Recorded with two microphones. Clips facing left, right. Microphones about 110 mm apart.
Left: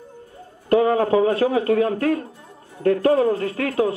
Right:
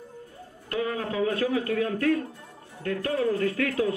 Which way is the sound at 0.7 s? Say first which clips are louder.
Left 12 dB; 40° left (ahead or behind).